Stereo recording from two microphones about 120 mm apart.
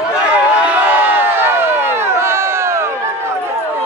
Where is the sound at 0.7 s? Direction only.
15° right (ahead or behind).